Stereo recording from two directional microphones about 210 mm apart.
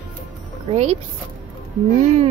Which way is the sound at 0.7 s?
35° right (ahead or behind).